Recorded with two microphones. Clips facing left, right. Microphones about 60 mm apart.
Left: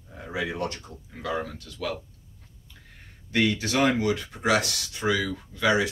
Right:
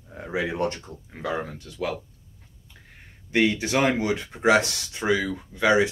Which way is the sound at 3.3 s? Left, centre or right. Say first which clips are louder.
Right 2 dB; right.